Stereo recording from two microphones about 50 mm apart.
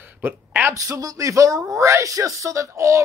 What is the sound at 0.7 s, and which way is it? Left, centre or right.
Speech, right.